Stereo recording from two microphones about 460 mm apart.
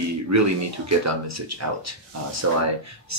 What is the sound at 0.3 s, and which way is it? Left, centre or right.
Speech, right.